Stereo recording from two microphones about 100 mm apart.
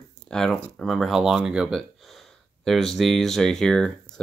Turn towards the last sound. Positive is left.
turn(degrees=5)  # may be behind; listen again after turning